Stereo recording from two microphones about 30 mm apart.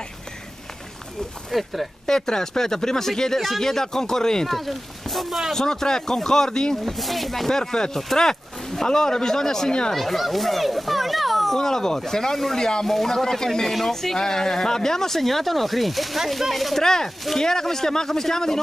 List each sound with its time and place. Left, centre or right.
1.5 s speech: centre
2.0 s speech: left
3.3 s speech: centre
3.6 s speech: centre
4.5 s speech: centre
5.5 s speech: centre
6.9 s speech: centre
7.4 s speech: left
9.9 s a child's voice: centre
11.5 s speech: centre
12.8 s speech: centre
14.1 s speech: left; by 16.8 s centre
16.8 s speech: centre